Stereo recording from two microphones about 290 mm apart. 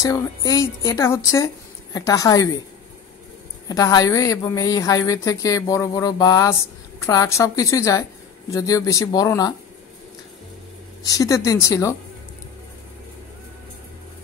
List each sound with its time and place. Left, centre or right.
0.0 s a woman's voice: centre
3.6 s a woman's voice: centre
11.1 s a woman's voice: centre